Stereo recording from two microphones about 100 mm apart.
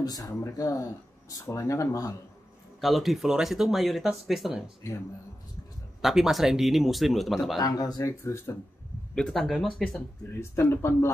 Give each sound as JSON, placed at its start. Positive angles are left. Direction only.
{"t": 0.0, "sound": "speech", "side_deg": 40}
{"t": 2.8, "sound": "speech", "side_deg": 0}
{"t": 5.9, "sound": "speech", "side_deg": -5}
{"t": 7.5, "sound": "speech", "side_deg": 40}
{"t": 8.1, "sound": "speech", "side_deg": 25}
{"t": 9.1, "sound": "speech", "side_deg": 5}
{"t": 10.3, "sound": "speech", "side_deg": 25}